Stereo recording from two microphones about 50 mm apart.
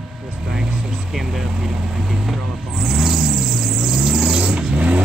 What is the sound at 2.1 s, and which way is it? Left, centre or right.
Vehicle, centre.